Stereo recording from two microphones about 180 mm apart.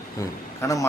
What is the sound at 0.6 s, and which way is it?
Speech, 15° left (ahead or behind).